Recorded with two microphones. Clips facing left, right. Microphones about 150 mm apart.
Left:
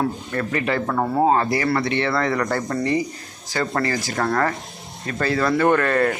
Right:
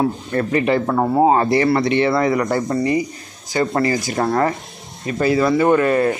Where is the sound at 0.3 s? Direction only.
25° right (ahead or behind).